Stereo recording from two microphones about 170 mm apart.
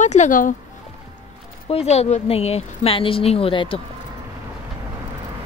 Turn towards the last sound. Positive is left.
turn(degrees=30)  # may be behind; listen again after turning